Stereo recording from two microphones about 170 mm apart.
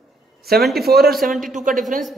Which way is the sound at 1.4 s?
50° right (ahead or behind).